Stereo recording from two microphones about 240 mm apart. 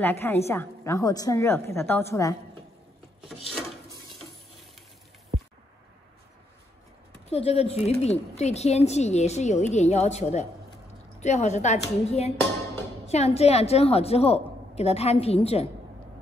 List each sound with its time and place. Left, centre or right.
0.0 s a woman's voice: centre
7.2 s a woman's voice: left